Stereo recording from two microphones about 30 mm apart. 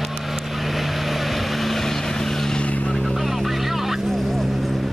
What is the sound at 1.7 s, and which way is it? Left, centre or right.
Vehicle, centre.